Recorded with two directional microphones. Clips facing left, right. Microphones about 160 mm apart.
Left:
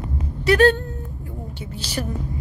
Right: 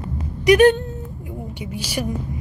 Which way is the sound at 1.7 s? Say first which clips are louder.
Right 3 dB; 10° right (ahead or behind).